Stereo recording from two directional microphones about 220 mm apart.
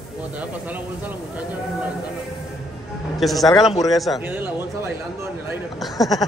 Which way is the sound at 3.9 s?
Centre (ahead or behind).